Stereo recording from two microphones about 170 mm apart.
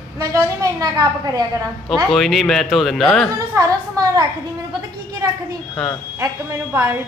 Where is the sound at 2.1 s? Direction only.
Centre (ahead or behind).